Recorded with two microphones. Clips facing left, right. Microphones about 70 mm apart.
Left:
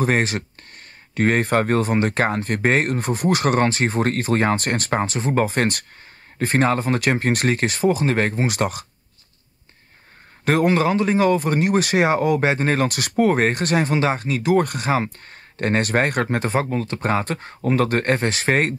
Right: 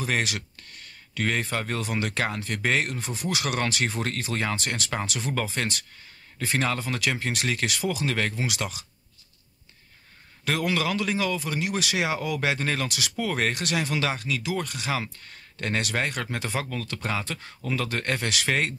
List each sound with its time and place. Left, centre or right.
0.0 s speech: left
10.4 s speech: left